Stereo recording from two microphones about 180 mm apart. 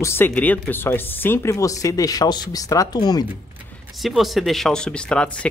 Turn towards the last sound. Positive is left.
turn(degrees=5)  # may be behind; listen again after turning